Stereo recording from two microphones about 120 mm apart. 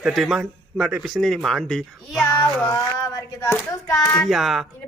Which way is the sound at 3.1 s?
25° left (ahead or behind).